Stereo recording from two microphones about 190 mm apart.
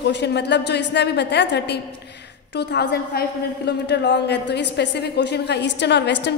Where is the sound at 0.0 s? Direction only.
65° left (ahead or behind).